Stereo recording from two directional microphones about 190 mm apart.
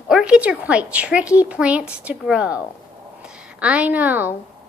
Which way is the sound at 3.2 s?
5° right (ahead or behind).